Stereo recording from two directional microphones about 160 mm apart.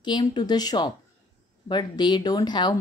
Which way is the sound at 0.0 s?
30° left (ahead or behind).